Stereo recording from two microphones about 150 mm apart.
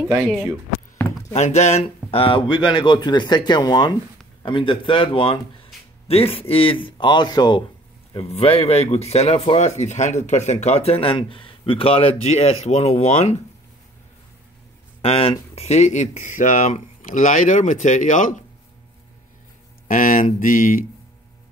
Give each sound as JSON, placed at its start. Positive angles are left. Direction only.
{"t": 1.3, "sound": "speech", "side_deg": 50}
{"t": 8.3, "sound": "speech", "side_deg": 40}
{"t": 15.0, "sound": "speech", "side_deg": 40}
{"t": 19.9, "sound": "speech", "side_deg": 65}